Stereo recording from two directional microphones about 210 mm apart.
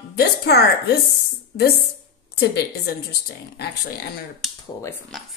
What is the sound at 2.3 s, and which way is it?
A woman's voice, 50° left (ahead or behind).